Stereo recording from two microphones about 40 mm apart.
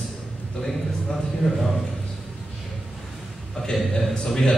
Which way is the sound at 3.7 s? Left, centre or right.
Centre.